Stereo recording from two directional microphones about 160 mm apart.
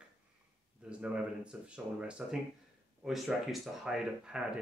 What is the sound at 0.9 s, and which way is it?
Speech, 5° right (ahead or behind).